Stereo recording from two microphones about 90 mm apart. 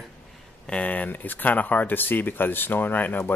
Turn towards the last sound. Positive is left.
turn(degrees=20)  # may be behind; listen again after turning